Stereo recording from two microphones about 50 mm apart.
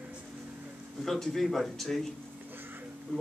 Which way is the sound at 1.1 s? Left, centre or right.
Centre.